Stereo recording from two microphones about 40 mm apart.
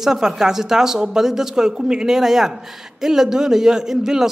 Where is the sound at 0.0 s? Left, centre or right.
Centre.